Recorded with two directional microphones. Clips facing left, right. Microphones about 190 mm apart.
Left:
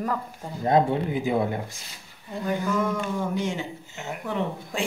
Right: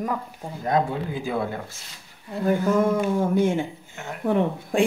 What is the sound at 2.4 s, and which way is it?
Speech, 50° right (ahead or behind).